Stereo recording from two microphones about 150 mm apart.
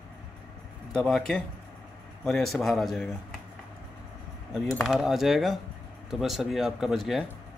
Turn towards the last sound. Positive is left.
turn(degrees=0)  # may be behind; listen again after turning